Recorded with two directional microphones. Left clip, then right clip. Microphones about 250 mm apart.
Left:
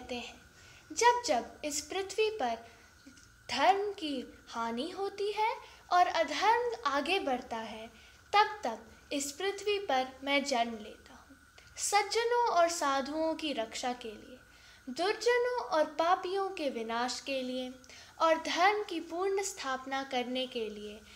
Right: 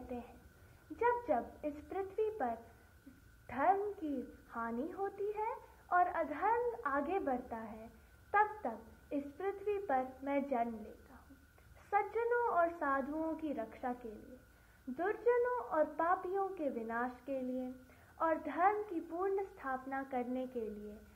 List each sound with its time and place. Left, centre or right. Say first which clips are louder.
0.9 s a woman's voice: left 7 dB; left
11.9 s a woman's voice: left 5 dB; left